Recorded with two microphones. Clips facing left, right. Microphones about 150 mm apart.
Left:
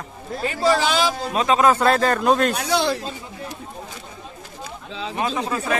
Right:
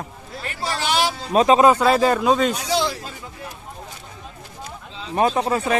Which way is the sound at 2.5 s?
60° left (ahead or behind).